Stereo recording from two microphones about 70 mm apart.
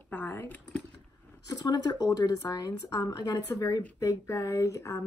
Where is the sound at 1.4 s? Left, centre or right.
Left.